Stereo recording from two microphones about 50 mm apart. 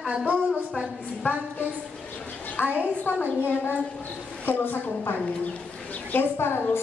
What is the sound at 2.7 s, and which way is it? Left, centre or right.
A woman's voice, left.